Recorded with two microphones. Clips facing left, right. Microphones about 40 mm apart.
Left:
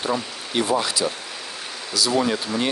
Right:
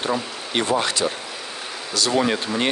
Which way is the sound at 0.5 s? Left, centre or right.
Right.